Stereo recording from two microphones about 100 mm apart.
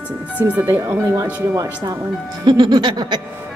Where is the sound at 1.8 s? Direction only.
40° right (ahead or behind).